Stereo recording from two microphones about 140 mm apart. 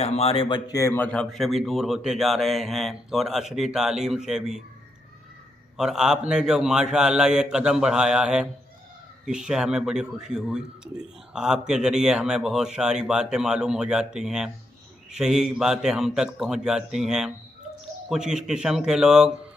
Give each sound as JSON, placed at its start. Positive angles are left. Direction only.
{"t": 0.0, "sound": "speech", "side_deg": 45}
{"t": 0.7, "sound": "a man's voice", "side_deg": 25}
{"t": 0.9, "sound": "a man's voice", "side_deg": 10}
{"t": 5.8, "sound": "a man's voice", "side_deg": -5}